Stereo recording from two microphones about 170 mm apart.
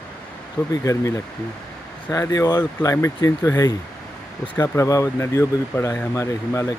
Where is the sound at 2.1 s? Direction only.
20° left (ahead or behind).